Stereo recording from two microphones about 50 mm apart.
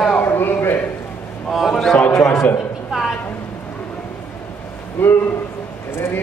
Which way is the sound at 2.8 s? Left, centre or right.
Centre.